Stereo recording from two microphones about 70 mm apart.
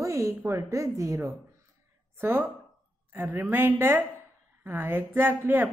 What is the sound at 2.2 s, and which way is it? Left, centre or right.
A woman's voice, right.